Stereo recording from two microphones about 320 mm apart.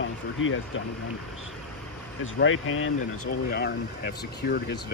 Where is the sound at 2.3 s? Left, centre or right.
Left.